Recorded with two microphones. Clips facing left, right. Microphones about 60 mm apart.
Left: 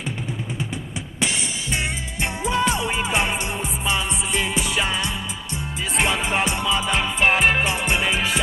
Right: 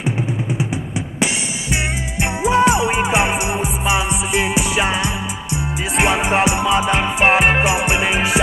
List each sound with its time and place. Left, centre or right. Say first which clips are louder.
2.4 s music: right 8 dB; centre
7.6 s music: right 5 dB; centre